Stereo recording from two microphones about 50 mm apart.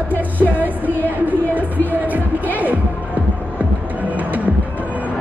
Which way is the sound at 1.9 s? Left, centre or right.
Right.